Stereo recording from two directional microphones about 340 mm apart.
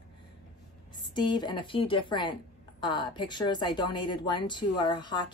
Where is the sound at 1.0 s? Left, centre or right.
Centre.